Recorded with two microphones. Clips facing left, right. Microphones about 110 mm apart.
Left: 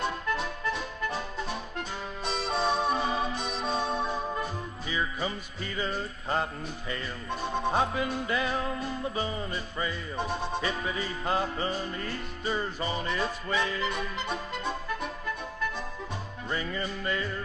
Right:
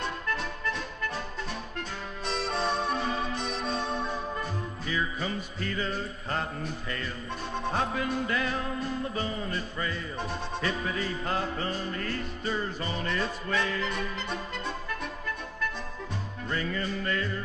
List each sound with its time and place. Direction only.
0.0 s music: 5° left (ahead or behind)
16.4 s music: 10° left (ahead or behind)